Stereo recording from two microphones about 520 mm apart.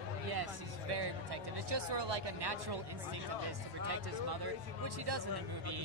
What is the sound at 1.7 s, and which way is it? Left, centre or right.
Speech, right.